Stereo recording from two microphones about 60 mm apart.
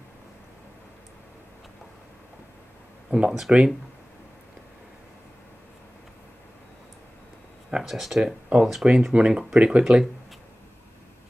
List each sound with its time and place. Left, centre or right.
3.1 s speech: centre
7.7 s speech: centre
8.2 s speech: centre